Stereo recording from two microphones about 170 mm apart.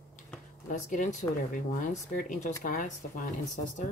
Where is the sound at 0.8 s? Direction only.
50° left (ahead or behind).